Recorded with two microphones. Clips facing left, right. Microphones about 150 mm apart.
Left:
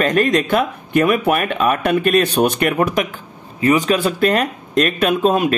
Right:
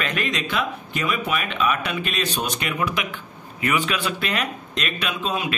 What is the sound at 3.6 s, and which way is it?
Speech, 35° left (ahead or behind).